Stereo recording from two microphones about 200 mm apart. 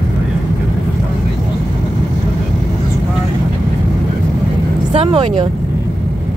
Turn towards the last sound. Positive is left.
turn(degrees=-30)  # may be behind; listen again after turning